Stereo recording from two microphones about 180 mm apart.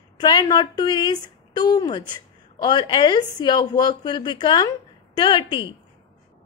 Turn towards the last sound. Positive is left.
turn(degrees=25)  # may be behind; listen again after turning